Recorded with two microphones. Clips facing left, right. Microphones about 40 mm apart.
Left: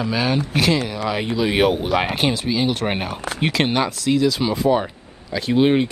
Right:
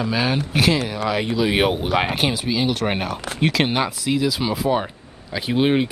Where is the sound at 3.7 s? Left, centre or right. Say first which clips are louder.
Left 2 dB; centre.